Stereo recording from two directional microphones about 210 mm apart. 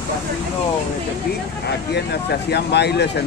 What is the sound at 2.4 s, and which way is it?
Speech, 50° left (ahead or behind).